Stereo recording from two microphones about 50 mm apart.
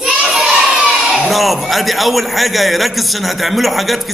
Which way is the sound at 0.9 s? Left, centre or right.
Centre.